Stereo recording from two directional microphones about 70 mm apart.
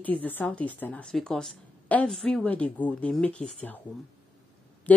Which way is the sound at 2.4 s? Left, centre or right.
Left.